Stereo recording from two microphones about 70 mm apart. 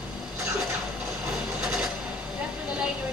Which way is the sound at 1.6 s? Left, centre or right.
Centre.